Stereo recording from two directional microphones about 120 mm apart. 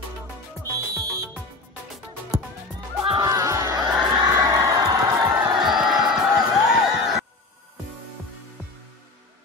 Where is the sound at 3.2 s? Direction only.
25° right (ahead or behind).